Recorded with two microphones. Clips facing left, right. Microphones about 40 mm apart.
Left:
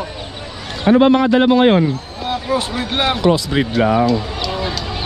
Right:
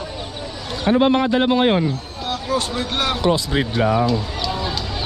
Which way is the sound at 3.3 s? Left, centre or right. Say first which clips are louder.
Left 3 dB; left.